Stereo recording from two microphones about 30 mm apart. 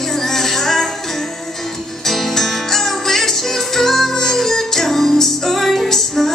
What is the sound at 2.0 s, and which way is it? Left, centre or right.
Music, centre.